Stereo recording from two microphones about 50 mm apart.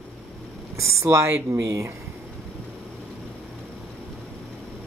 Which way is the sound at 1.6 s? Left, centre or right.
Right.